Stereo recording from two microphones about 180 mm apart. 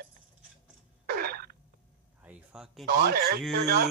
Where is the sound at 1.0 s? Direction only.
60° right (ahead or behind).